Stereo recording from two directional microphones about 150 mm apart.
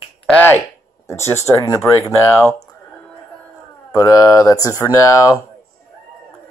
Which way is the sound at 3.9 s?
25° left (ahead or behind).